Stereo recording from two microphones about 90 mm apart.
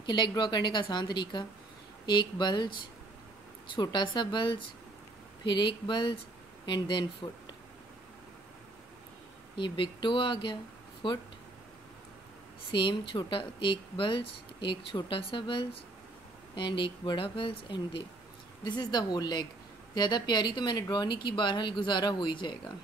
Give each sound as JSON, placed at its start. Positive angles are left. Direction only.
{"t": 0.0, "sound": "speech", "side_deg": 60}
{"t": 9.6, "sound": "speech", "side_deg": 65}
{"t": 12.7, "sound": "speech", "side_deg": 65}
{"t": 18.6, "sound": "speech", "side_deg": 55}